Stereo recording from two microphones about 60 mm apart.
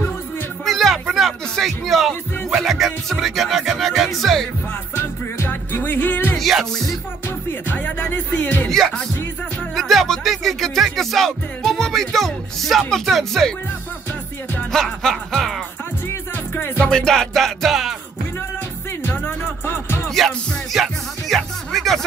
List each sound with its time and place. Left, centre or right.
0.7 s speech: centre
4.9 s music: left
6.3 s music: centre
7.2 s music: left
8.6 s music: centre
14.7 s music: centre
16.5 s music: left
16.8 s music: centre
19.0 s music: left
20.2 s music: centre